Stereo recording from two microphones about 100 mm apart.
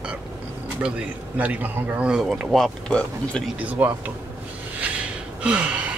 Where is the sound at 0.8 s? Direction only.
10° right (ahead or behind); by 3.4 s 10° left (ahead or behind).